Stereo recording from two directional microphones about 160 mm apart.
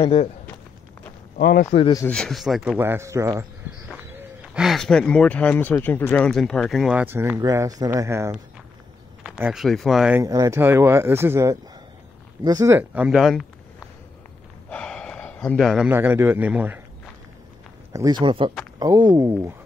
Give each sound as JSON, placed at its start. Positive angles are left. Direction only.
{"t": 0.0, "sound": "speech", "side_deg": 40}
{"t": 1.4, "sound": "a man's voice", "side_deg": 75}
{"t": 2.0, "sound": "speech", "side_deg": 0}
{"t": 2.8, "sound": "speech", "side_deg": -15}
{"t": 4.1, "sound": "gasp", "side_deg": -10}
{"t": 4.6, "sound": "speech", "side_deg": 0}
{"t": 7.3, "sound": "speech", "side_deg": -20}
{"t": 9.2, "sound": "speech", "side_deg": -5}
{"t": 10.1, "sound": "speech", "side_deg": -20}
{"t": 14.7, "sound": "gasp", "side_deg": 5}
{"t": 15.9, "sound": "speech", "side_deg": -15}
{"t": 17.9, "sound": "speech", "side_deg": -25}